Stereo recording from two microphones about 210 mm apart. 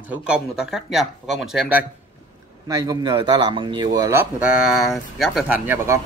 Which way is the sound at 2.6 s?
15° right (ahead or behind).